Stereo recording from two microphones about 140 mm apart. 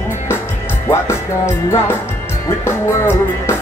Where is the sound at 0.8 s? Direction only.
20° left (ahead or behind).